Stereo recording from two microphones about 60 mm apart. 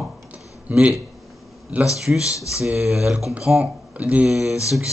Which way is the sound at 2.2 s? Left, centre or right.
Left.